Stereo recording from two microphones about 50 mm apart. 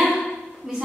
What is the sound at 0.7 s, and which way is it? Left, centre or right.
Speech, centre.